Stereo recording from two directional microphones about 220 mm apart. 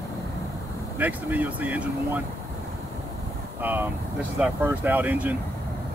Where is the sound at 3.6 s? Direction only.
10° right (ahead or behind).